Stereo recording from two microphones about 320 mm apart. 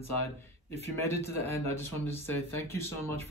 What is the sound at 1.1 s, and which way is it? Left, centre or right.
Speech, centre.